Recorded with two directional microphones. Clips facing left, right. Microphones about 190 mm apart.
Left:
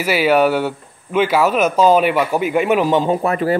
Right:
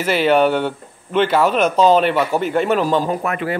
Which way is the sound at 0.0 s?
5° left (ahead or behind).